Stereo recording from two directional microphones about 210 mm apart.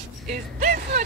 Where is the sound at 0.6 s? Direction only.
35° right (ahead or behind).